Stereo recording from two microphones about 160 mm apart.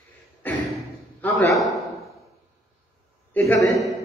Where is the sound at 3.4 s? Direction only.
20° left (ahead or behind).